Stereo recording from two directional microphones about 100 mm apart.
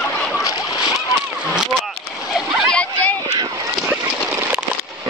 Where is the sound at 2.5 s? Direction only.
10° left (ahead or behind).